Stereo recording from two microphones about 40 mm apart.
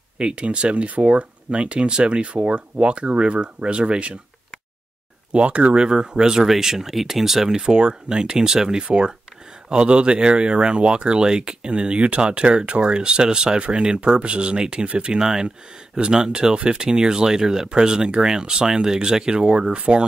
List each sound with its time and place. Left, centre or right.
0.2 s speech: right
5.3 s speech: right
5.8 s speech: centre
6.4 s speech: centre
7.4 s speech: centre
15.1 s speech: centre